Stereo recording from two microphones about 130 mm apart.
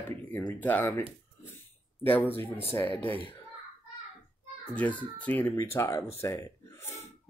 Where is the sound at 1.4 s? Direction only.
15° left (ahead or behind).